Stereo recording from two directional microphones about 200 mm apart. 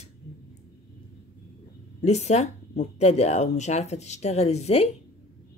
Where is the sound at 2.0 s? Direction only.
35° left (ahead or behind).